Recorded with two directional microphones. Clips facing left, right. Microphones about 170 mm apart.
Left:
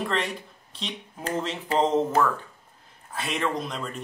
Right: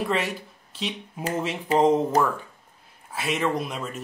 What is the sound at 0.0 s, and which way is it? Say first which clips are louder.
Speech: right 2 dB; 5° right (ahead or behind).